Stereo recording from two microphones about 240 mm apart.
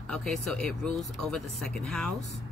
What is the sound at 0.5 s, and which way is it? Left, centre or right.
Speech, right.